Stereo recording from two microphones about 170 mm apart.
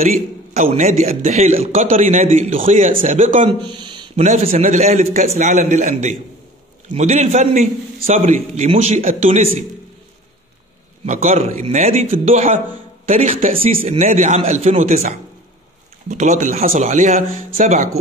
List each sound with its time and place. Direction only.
0.6 s a man's voice: 40° right (ahead or behind)
2.9 s speech: 50° right (ahead or behind)
3.4 s speech: 25° right (ahead or behind)
4.2 s a man's voice: 40° right (ahead or behind)
11.1 s a man's voice: 40° right (ahead or behind)